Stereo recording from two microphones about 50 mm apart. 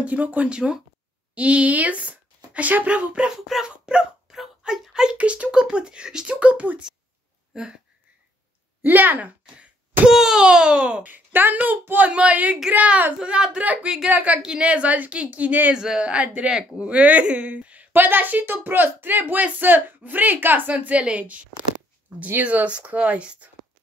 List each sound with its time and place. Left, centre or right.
0.0 s a woman's voice: right; by 5.1 s centre
5.1 s a woman's voice: right
7.5 s a sound: centre
8.8 s a woman's voice: right
10.0 s a sound: centre
10.4 s a woman's voice: centre
11.1 s a woman's voice: right
12.0 s a woman's voice: right
13.2 s a woman's voice: centre
13.8 s a sound: centre
14.1 s a woman's voice: right
15.7 s a sound: centre
16.1 s a woman's voice: right
17.9 s a woman's voice: right